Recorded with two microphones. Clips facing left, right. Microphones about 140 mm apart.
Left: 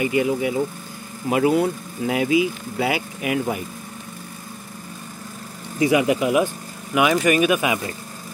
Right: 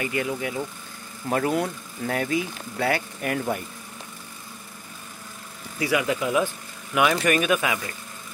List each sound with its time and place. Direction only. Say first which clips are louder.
0.0 s speech: left 7 dB; 15° left (ahead or behind)
5.8 s speech: left 6 dB; 20° left (ahead or behind); by 7.6 s 5° left (ahead or behind)
7.6 s speech: left 4 dB; 20° left (ahead or behind)